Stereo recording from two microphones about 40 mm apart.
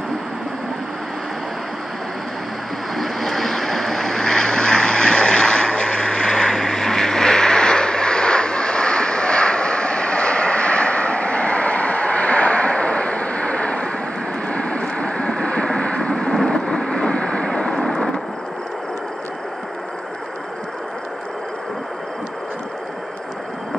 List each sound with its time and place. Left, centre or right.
3.0 s vehicle: centre; by 18.2 s left